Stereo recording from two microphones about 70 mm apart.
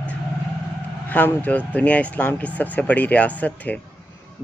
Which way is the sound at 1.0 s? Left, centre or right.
Left.